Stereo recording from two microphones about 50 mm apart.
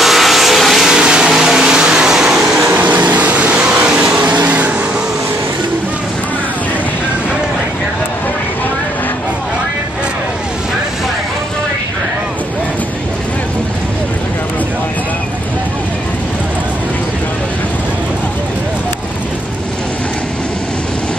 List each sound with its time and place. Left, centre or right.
0.0 s vehicle: centre
0.8 s vehicle: centre
2.7 s vehicle: right